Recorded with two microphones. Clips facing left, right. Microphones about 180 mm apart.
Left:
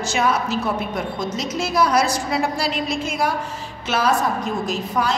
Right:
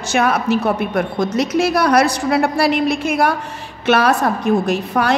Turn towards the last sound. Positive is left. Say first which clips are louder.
# right 5 dB
turn(degrees=-65)  # may be behind; listen again after turning